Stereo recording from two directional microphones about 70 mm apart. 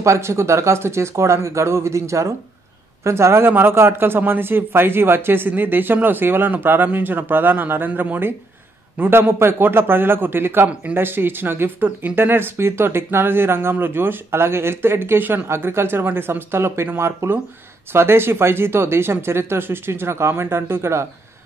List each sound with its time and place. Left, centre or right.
0.0 s speech: right